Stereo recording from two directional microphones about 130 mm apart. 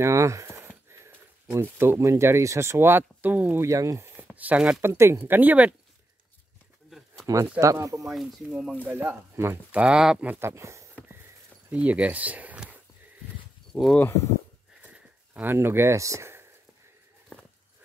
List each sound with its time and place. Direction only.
0.0 s speech: 20° right (ahead or behind)
3.6 s speech: 25° right (ahead or behind)
4.3 s speech: 10° right (ahead or behind)
4.8 s speech: 20° right (ahead or behind)
6.9 s a sound: centre (ahead or behind)
7.6 s speech: 25° right (ahead or behind)
8.1 s speech: 5° right (ahead or behind)
8.8 s speech: 20° right (ahead or behind)
9.8 s speech: 5° right (ahead or behind); by 10.9 s 25° right (ahead or behind)
11.7 s speech: 10° right (ahead or behind)
13.7 s speech: 10° right (ahead or behind)
14.8 s a sound: 10° right (ahead or behind)